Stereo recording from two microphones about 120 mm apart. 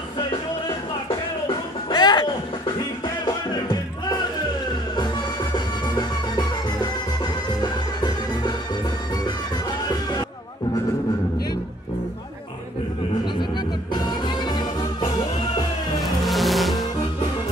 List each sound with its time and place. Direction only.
1.5 s music: 40° left (ahead or behind)
13.9 s music: 40° left (ahead or behind)
16.0 s music: centre (ahead or behind)